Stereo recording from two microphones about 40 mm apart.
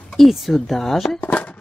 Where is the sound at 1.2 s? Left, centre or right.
Left.